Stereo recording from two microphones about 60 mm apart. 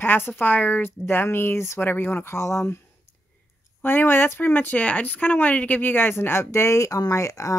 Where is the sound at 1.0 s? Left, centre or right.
Left.